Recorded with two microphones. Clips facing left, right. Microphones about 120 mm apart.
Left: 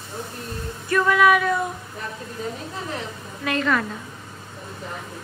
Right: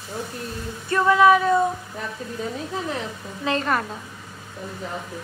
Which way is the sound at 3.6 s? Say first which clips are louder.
Left 6 dB; 40° right (ahead or behind).